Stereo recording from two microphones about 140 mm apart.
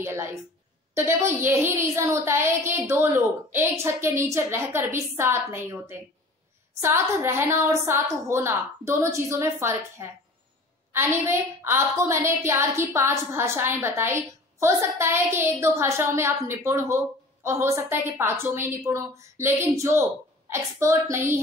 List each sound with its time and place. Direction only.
0.0 s a woman's voice: 20° right (ahead or behind)